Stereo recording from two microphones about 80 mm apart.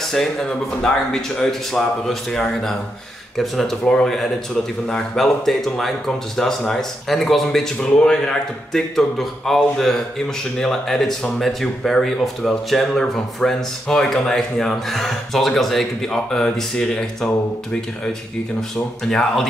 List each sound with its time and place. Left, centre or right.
0.1 s speech: centre
19.0 s speech: centre